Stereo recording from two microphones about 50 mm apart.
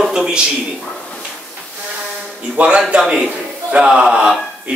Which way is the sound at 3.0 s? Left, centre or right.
Centre.